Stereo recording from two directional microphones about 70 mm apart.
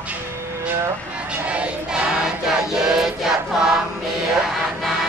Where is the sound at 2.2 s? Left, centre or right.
Centre.